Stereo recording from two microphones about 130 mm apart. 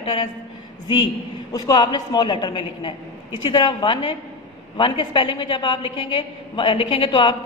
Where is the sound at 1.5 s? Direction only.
30° left (ahead or behind).